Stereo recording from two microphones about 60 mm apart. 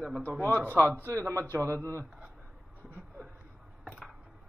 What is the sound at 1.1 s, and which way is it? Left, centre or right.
Speech, right.